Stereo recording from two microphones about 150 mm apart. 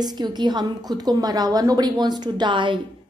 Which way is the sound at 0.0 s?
25° right (ahead or behind).